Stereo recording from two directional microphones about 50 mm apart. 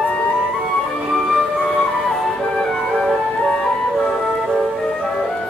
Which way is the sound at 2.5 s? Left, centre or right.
Centre.